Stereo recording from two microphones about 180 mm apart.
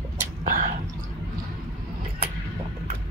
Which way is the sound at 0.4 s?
45° right (ahead or behind).